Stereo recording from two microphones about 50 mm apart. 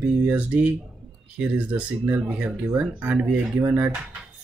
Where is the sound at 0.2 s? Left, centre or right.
Right.